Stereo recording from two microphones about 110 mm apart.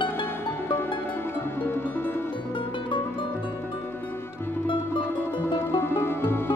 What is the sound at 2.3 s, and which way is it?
Music, 50° left (ahead or behind).